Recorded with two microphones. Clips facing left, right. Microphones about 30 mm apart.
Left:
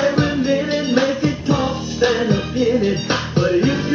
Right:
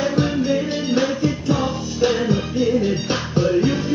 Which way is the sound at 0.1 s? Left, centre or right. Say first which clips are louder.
Left 2 dB; left.